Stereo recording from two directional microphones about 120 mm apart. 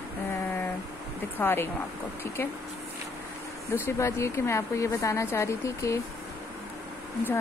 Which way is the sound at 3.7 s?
20° left (ahead or behind).